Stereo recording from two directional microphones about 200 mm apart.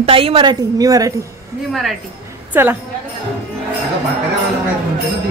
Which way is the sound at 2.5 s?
10° right (ahead or behind).